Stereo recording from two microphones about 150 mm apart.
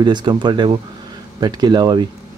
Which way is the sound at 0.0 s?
30° right (ahead or behind).